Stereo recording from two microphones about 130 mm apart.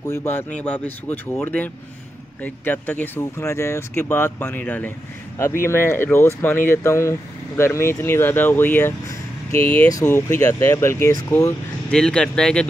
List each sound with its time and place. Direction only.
0.1 s speech: 15° left (ahead or behind)
9.8 s speech: 25° left (ahead or behind)
11.9 s speech: 5° left (ahead or behind)